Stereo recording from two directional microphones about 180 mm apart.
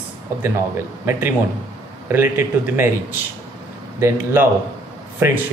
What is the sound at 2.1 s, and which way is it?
Speech, 10° right (ahead or behind).